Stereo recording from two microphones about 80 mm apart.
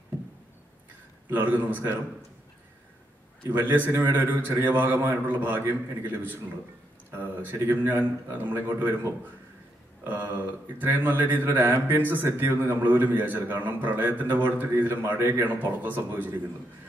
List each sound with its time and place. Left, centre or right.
1.3 s speech: right
3.5 s speech: right